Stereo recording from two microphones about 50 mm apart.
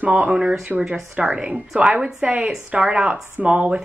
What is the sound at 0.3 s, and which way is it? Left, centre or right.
A woman's voice, centre.